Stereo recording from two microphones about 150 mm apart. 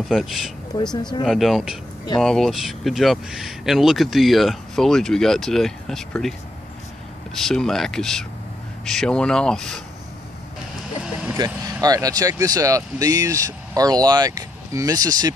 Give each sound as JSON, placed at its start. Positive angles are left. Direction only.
{"t": 0.1, "sound": "speech", "side_deg": 0}
{"t": 7.3, "sound": "speech", "side_deg": 5}
{"t": 11.3, "sound": "speech", "side_deg": -25}